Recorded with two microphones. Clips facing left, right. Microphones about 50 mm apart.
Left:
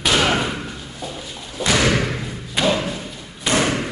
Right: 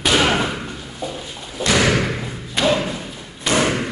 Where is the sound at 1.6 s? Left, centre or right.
Centre.